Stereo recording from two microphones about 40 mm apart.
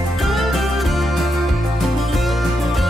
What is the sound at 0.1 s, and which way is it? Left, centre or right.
Music, centre.